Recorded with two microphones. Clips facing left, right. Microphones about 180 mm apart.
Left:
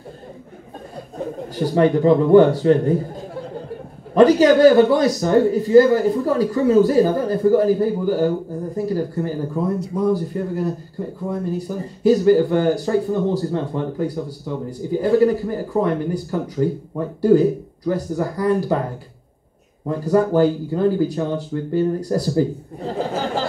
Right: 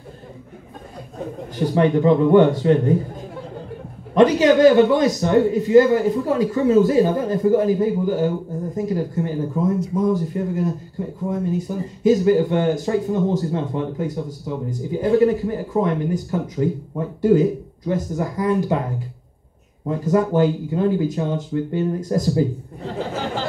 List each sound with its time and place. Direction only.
1.5 s speech: 35° left (ahead or behind)
4.1 s speech: 35° left (ahead or behind)
19.9 s speech: 35° left (ahead or behind)